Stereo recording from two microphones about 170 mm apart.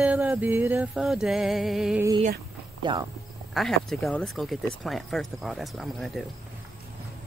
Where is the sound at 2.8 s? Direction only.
25° right (ahead or behind).